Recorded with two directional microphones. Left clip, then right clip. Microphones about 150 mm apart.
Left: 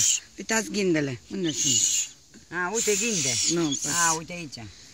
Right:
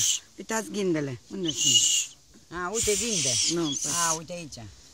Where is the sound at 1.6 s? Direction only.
60° right (ahead or behind).